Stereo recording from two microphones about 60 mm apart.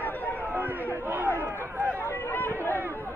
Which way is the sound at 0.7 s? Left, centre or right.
Right.